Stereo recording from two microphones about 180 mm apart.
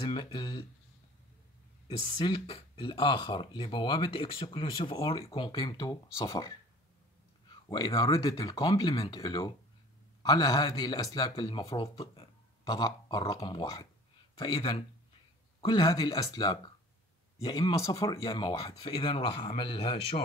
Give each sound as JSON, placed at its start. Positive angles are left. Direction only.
{"t": 0.0, "sound": "speech", "side_deg": 25}
{"t": 1.9, "sound": "speech", "side_deg": 25}
{"t": 7.7, "sound": "speech", "side_deg": 25}
{"t": 18.2, "sound": "speech", "side_deg": 30}